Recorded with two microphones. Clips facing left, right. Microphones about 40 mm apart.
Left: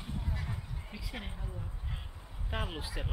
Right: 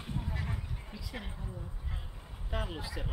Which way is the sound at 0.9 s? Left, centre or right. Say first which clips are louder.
Left 1 dB; centre.